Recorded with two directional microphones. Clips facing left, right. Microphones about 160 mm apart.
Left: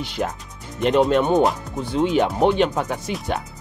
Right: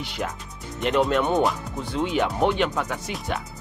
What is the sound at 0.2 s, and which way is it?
Speech, 35° left (ahead or behind).